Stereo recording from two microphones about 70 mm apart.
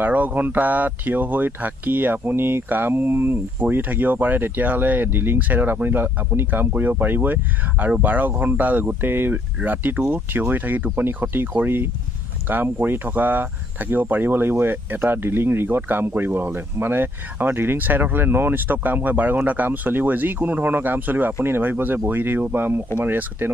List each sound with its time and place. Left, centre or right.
0.0 s speech: right